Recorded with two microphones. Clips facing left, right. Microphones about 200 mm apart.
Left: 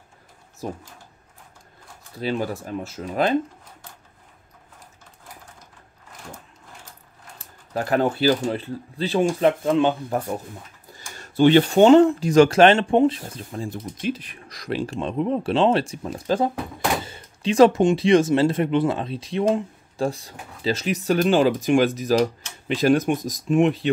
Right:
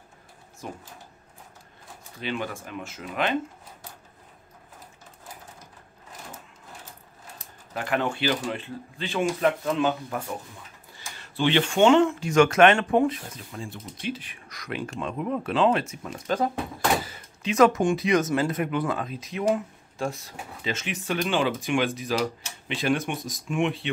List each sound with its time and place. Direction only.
0.6 s speech: 35° left (ahead or behind)
2.1 s speech: 35° left (ahead or behind)
7.7 s speech: 40° left (ahead or behind)
13.4 s speech: 35° left (ahead or behind)